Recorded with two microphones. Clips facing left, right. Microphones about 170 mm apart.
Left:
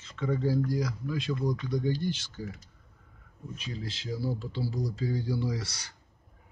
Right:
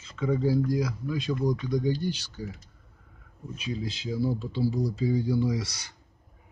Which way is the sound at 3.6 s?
15° right (ahead or behind).